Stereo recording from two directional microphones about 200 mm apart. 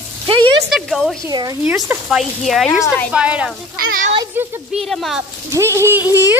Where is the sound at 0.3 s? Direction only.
25° right (ahead or behind).